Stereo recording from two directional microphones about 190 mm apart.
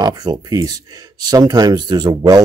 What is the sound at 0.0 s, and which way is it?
Speech, 20° right (ahead or behind).